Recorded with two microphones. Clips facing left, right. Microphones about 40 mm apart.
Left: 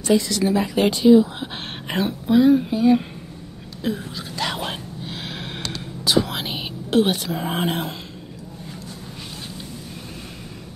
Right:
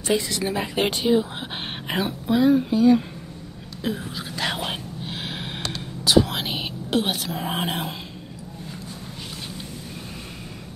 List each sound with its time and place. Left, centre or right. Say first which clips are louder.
0.0 s speech: left 4 dB; centre
1.9 s speech: left 3 dB; centre
3.8 s whispering: left 2 dB; centre